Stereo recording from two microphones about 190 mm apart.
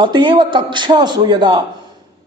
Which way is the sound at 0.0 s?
25° right (ahead or behind).